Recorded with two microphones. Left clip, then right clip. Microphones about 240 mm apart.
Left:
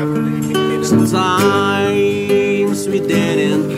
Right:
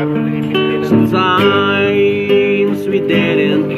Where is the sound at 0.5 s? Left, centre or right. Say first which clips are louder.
Right 2 dB; left.